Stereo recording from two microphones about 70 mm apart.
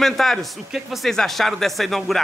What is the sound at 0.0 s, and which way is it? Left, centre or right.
Speech, centre.